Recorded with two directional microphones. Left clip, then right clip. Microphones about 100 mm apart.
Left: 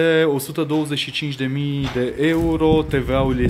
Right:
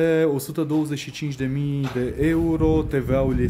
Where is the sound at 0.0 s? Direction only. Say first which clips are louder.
Left 3 dB; 35° right (ahead or behind).